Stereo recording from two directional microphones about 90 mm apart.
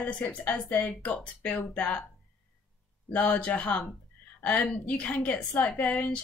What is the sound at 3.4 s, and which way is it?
A woman's voice, 15° left (ahead or behind).